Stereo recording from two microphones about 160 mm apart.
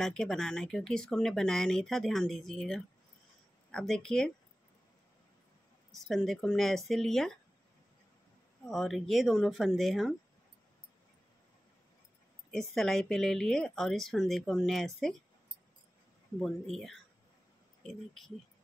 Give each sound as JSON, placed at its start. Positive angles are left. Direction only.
{"t": 0.0, "sound": "speech", "side_deg": 5}
{"t": 5.9, "sound": "speech", "side_deg": 0}
{"t": 8.6, "sound": "speech", "side_deg": 0}
{"t": 12.4, "sound": "speech", "side_deg": 5}
{"t": 16.3, "sound": "speech", "side_deg": 0}